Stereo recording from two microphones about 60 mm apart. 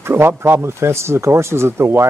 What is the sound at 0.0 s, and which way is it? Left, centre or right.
Speech, right.